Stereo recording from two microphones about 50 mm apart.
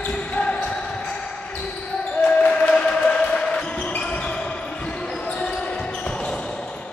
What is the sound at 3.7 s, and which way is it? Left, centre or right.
Basketball bounce, left.